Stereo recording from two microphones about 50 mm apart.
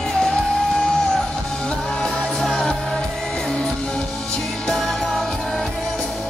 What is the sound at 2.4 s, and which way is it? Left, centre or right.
Music, centre.